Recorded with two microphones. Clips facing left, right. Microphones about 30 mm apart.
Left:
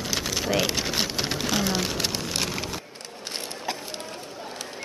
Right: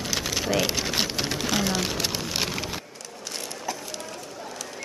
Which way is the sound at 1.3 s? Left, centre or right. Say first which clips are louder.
Even; centre.